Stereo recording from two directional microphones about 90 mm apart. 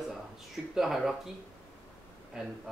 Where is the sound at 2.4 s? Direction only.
5° right (ahead or behind).